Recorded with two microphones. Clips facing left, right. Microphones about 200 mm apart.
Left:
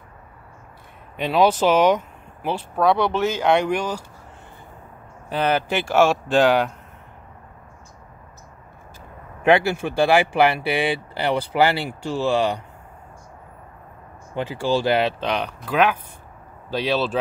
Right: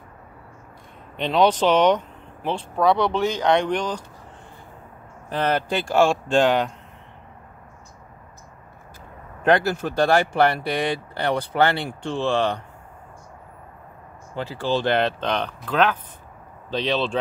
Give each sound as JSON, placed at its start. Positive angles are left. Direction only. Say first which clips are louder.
{"t": 1.1, "sound": "speech", "louder": "left 1 dB", "side_deg": 5}
{"t": 5.3, "sound": "speech", "louder": "left 1 dB", "side_deg": 5}
{"t": 9.4, "sound": "speech", "louder": "left 2 dB", "side_deg": 10}
{"t": 14.3, "sound": "speech", "louder": "left 2 dB", "side_deg": 15}